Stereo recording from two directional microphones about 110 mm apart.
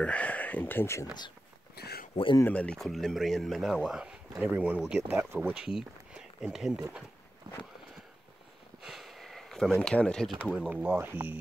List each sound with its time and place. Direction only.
0.0 s speech: 10° left (ahead or behind)
2.4 s speech: 10° left (ahead or behind)
7.5 s a sound: 40° right (ahead or behind)
8.8 s speech: centre (ahead or behind)
10.5 s speech: 10° right (ahead or behind)